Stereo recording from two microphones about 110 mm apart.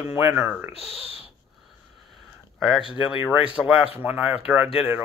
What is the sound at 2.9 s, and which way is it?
Speech, 10° right (ahead or behind).